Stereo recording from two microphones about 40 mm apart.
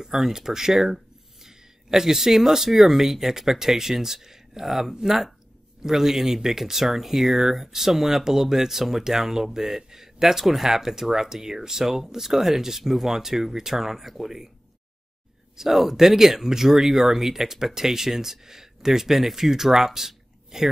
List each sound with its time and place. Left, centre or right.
0.0 s speech: centre
15.5 s speech: centre